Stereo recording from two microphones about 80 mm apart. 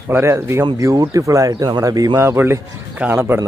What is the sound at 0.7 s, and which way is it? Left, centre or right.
Speech, right.